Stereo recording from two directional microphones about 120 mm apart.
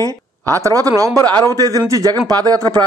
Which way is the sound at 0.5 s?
30° right (ahead or behind).